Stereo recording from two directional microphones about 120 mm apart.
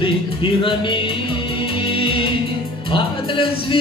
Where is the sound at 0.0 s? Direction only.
45° left (ahead or behind).